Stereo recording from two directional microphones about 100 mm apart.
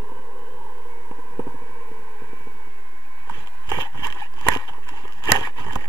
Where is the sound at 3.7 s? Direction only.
40° left (ahead or behind).